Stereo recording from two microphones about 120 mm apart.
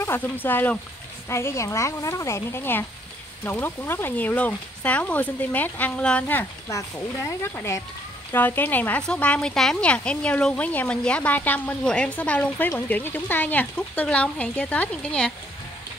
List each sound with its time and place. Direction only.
0.0 s speech: 15° left (ahead or behind)